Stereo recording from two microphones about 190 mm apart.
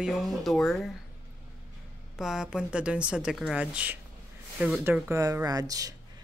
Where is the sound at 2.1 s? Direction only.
Centre (ahead or behind).